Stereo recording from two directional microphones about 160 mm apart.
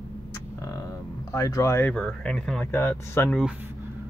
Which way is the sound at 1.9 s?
5° left (ahead or behind).